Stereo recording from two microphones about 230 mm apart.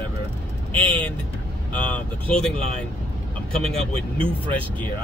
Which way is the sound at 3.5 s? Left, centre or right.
Right.